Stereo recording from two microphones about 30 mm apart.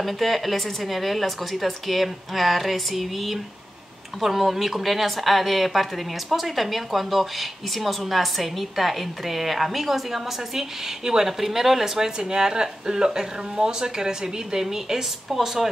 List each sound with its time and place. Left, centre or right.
0.0 s speech: centre